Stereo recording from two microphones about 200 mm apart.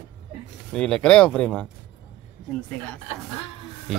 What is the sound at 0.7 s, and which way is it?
Speech, 5° left (ahead or behind).